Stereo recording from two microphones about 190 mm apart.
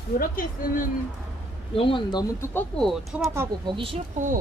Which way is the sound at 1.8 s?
25° left (ahead or behind).